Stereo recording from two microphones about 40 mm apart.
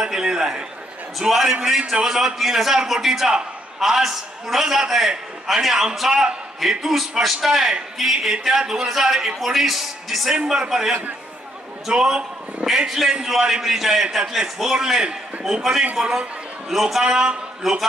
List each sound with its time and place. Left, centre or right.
0.0 s a sound: centre
1.5 s a man's voice: centre
10.3 s a man's voice: centre
17.0 s a man's voice: right